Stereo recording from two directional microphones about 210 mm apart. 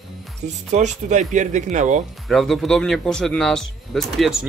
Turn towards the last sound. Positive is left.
turn(degrees=0)  # may be behind; listen again after turning